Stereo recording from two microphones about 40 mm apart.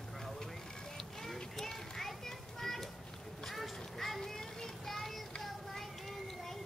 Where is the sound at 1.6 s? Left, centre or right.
Centre.